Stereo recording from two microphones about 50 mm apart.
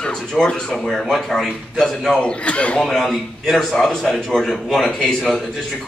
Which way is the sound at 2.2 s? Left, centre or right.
Left.